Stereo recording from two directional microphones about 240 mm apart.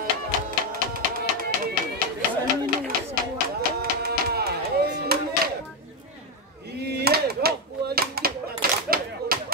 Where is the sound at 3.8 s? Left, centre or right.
Right.